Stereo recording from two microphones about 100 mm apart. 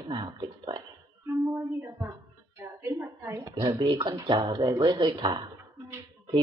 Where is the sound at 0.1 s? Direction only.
55° right (ahead or behind).